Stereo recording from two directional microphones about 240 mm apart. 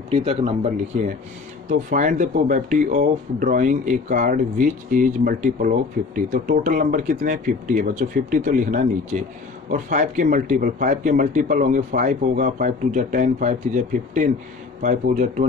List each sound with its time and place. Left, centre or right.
0.1 s speech: right